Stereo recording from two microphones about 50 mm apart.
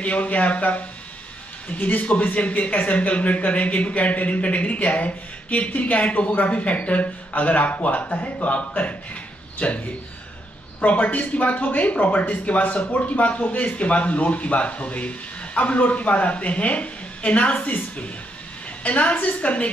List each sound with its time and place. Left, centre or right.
0.0 s speech: left
10.9 s speech: left
18.9 s speech: left